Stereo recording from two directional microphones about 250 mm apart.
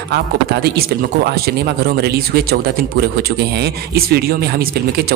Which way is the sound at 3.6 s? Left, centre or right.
Right.